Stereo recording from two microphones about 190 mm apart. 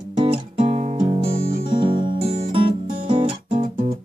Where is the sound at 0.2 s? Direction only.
30° right (ahead or behind).